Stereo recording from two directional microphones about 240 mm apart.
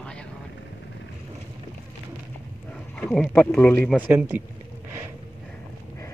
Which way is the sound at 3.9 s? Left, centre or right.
Centre.